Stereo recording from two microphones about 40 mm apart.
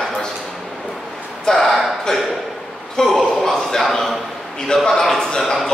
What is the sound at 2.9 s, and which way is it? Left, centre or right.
A man's voice, centre.